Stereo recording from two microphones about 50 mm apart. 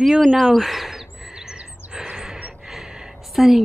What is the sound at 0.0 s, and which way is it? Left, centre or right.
Speech, centre.